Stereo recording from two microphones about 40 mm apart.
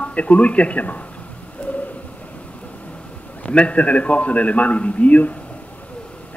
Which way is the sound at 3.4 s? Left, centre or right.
Left.